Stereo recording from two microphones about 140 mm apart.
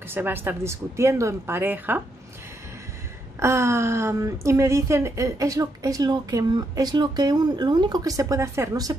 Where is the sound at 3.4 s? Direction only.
20° right (ahead or behind).